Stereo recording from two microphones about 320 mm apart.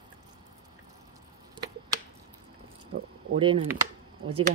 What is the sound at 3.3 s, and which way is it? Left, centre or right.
Speech, centre.